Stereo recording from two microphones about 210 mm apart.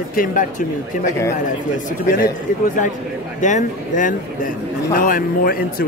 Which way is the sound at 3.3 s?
35° left (ahead or behind).